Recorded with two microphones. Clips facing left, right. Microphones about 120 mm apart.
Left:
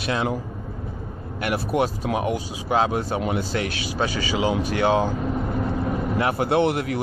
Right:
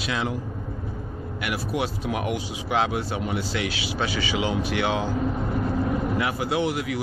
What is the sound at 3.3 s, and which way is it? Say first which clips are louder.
Speech: left 2 dB; 50° left (ahead or behind).